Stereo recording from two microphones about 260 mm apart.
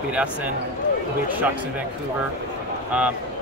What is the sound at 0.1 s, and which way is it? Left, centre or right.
Speech, centre.